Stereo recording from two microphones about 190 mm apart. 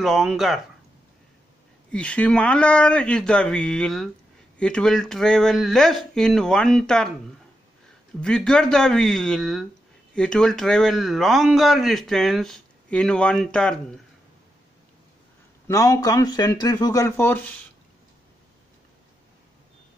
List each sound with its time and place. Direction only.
0.0 s speech: centre (ahead or behind)
1.9 s speech: 5° left (ahead or behind)
8.2 s speech: 5° left (ahead or behind)
15.6 s speech: 15° left (ahead or behind)